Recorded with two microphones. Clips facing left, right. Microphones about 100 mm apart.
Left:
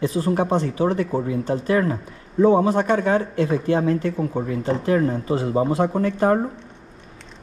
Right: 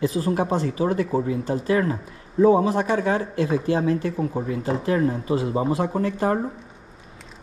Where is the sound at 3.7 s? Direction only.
45° left (ahead or behind).